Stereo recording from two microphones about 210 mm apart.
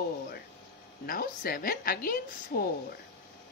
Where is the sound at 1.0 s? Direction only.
45° left (ahead or behind).